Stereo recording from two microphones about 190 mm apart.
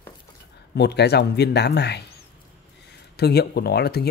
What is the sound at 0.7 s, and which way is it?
Speech, 60° left (ahead or behind).